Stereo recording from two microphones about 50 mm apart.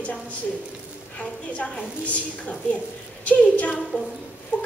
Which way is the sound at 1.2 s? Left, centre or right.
Left.